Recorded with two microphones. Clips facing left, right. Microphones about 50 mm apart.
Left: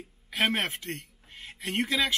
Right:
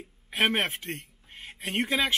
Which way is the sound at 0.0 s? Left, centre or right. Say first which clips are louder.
Right 2 dB; right.